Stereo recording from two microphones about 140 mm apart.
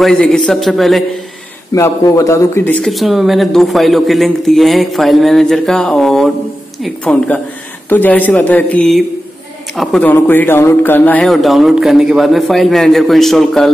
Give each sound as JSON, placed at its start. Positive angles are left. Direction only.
{"t": 0.0, "sound": "a man's voice", "side_deg": 5}
{"t": 1.7, "sound": "a man's voice", "side_deg": 25}
{"t": 2.8, "sound": "a man's voice", "side_deg": 0}
{"t": 11.2, "sound": "a man's voice", "side_deg": 0}